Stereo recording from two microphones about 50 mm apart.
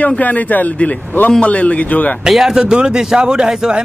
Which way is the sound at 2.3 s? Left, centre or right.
Centre.